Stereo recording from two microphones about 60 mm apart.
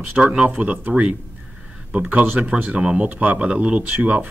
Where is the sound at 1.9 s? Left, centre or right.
Right.